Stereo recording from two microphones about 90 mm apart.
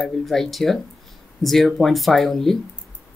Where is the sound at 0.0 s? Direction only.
5° left (ahead or behind).